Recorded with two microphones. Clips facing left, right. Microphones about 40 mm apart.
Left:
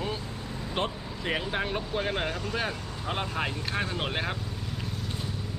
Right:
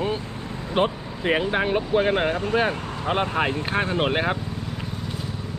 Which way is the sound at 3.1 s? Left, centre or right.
Right.